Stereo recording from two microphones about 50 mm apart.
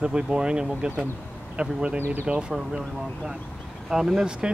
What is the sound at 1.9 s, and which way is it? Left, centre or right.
Speech, right.